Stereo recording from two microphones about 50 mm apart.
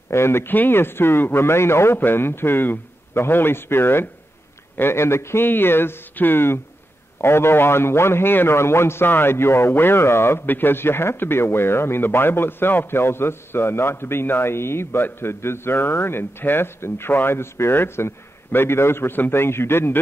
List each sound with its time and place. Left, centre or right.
0.1 s speech: left
0.5 s a man's voice: left
2.0 s a man's voice: left
8.5 s speech: left
10.4 s a man's voice: left
14.5 s a man's voice: left